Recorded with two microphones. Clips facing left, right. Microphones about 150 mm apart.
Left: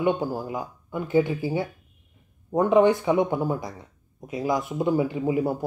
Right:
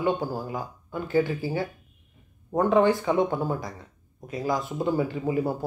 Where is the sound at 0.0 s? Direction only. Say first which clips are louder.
Left 2 dB; 20° left (ahead or behind).